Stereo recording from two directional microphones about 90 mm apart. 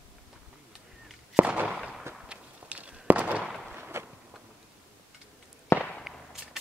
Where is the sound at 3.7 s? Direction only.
25° right (ahead or behind).